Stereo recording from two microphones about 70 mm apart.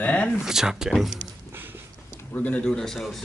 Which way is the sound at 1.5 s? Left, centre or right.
Right.